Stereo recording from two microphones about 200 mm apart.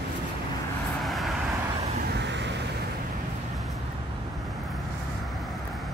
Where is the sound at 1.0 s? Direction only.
Centre (ahead or behind).